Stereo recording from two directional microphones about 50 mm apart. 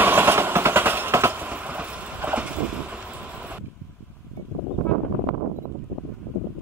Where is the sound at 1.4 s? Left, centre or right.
Right.